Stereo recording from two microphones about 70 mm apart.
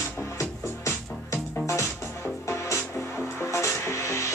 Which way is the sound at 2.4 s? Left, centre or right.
Left.